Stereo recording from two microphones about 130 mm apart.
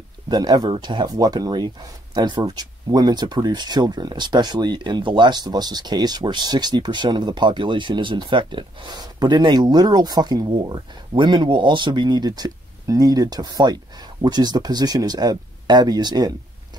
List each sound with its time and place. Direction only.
0.3 s speech: 30° right (ahead or behind)